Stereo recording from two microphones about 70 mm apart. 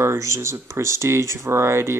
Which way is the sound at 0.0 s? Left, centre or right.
Right.